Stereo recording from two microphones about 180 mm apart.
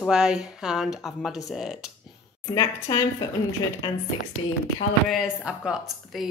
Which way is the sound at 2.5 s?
20° left (ahead or behind).